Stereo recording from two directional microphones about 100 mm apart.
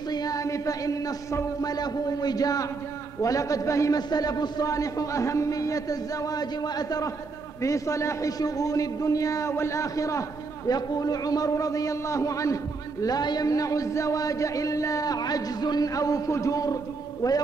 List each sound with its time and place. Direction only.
0.1 s a man's voice: 40° left (ahead or behind)
13.0 s a man's voice: 45° left (ahead or behind)